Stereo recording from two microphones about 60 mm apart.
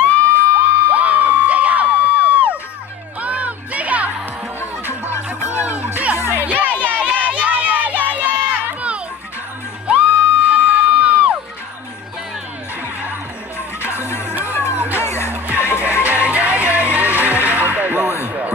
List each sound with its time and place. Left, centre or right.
0.3 s crowd: right
3.2 s music: right
7.0 s crowd: right
9.9 s music: right
14.3 s music: right
15.0 s music: left
15.3 s music: right
18.2 s a sound: right